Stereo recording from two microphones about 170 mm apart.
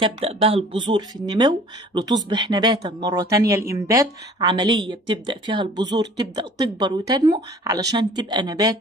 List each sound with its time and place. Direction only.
0.0 s speech: 35° right (ahead or behind)